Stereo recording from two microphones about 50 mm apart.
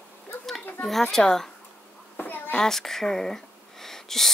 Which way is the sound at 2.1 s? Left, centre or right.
Left.